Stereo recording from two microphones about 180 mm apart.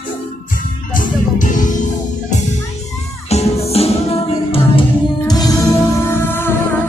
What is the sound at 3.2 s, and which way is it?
Music, 35° left (ahead or behind).